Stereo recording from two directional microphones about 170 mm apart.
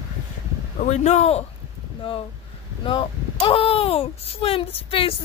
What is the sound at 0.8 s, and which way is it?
Speech, 45° left (ahead or behind).